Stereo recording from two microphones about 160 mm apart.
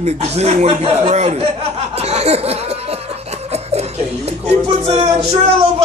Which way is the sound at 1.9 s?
40° right (ahead or behind).